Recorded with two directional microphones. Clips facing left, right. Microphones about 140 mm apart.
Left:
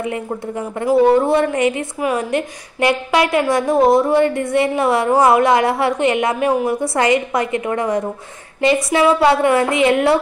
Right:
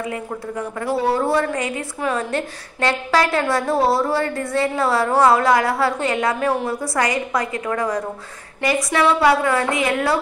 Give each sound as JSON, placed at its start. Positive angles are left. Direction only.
{"t": 0.0, "sound": "a woman's voice", "side_deg": 25}